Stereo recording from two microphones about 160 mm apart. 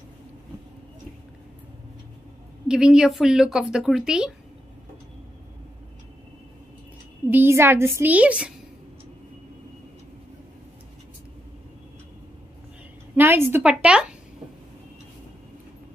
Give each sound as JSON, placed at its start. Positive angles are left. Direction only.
{"t": 2.7, "sound": "speech", "side_deg": -5}
{"t": 7.2, "sound": "a woman's voice", "side_deg": -15}
{"t": 13.1, "sound": "a woman's voice", "side_deg": -15}